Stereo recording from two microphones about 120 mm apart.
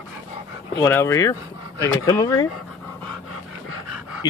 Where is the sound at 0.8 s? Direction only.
20° left (ahead or behind).